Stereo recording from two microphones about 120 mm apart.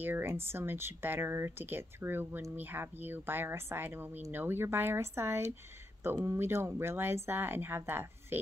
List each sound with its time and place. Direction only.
0.0 s speech: 20° right (ahead or behind)